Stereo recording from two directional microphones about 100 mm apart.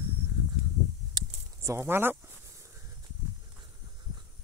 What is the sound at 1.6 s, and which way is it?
Speech, 25° right (ahead or behind).